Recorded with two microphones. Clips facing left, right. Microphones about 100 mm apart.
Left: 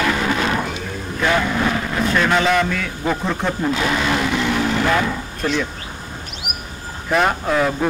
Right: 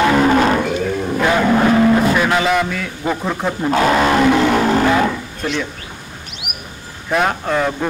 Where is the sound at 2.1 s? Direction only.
5° right (ahead or behind).